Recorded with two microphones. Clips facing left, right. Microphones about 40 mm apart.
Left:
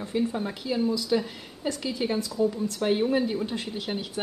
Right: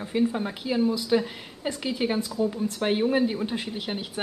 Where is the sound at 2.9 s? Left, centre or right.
Centre.